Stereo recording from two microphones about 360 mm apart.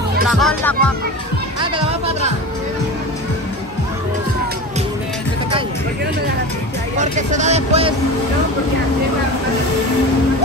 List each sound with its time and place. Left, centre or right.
0.3 s speech: centre
1.6 s speech: centre
7.0 s speech: centre